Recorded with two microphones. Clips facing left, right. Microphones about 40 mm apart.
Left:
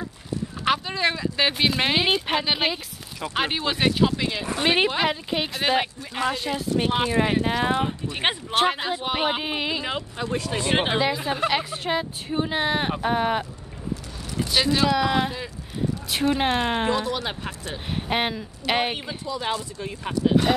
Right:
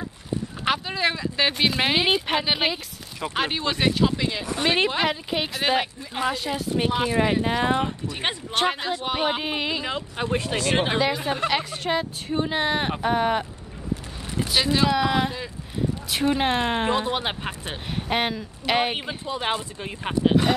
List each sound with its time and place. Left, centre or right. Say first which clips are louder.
0.7 s speech: left 1 dB; centre
4.8 s speech: even; centre
8.1 s speech: left 3 dB; left
8.5 s speech: even; centre
10.1 s speech: right 4 dB; right
10.6 s speech: left 2 dB; left
11.0 s speech: even; centre
14.5 s speech: even; centre
16.9 s speech: right 1 dB; right
17.9 s speech: even; centre
18.9 s speech: right 1 dB; right